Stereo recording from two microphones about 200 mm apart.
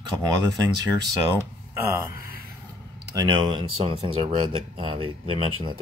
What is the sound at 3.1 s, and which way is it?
Speech, 25° right (ahead or behind).